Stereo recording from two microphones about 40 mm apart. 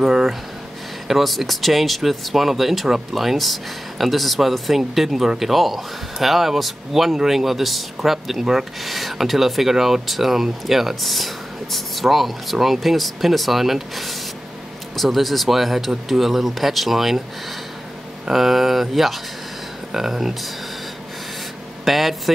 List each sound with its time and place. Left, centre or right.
0.0 s speech: centre
1.0 s a man's voice: centre
18.2 s a man's voice: centre
21.8 s a sound: centre